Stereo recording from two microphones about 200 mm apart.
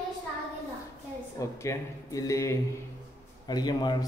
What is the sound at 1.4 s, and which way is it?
A man's voice, 15° left (ahead or behind).